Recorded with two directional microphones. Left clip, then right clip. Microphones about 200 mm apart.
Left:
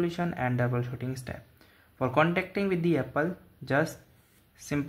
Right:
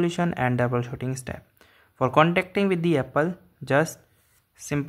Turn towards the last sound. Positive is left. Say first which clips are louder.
# right 3 dB
turn(degrees=-20)  # may be behind; listen again after turning